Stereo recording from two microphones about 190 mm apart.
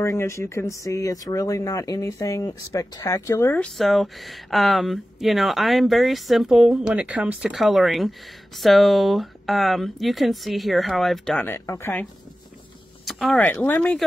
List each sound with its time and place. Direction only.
0.0 s speech: 15° left (ahead or behind)